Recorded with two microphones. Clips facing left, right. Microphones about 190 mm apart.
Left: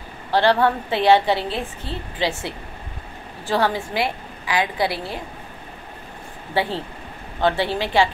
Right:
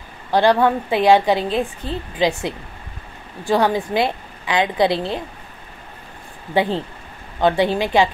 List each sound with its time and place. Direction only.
0.3 s a woman's voice: 15° right (ahead or behind)
6.5 s a woman's voice: 20° right (ahead or behind)